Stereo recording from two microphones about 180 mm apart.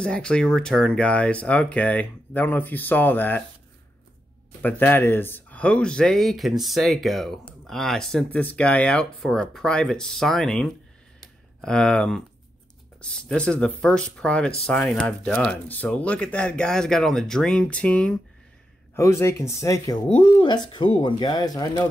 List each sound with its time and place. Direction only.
0.0 s speech: 5° left (ahead or behind)
4.6 s speech: 10° left (ahead or behind)
18.9 s speech: 15° left (ahead or behind)